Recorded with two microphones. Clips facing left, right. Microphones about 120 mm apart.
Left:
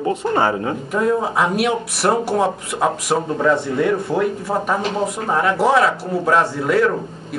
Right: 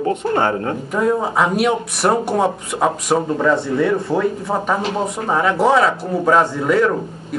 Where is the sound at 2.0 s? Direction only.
25° right (ahead or behind).